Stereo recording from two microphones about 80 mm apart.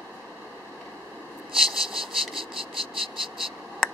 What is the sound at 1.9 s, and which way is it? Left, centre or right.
Insect, right.